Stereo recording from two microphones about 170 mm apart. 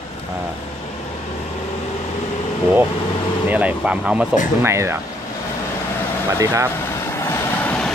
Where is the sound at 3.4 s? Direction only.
10° right (ahead or behind).